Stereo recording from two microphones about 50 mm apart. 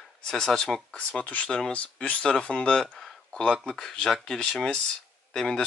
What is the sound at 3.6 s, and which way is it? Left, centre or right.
Speech, centre.